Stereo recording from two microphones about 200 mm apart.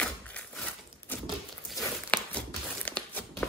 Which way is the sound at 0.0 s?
5° left (ahead or behind).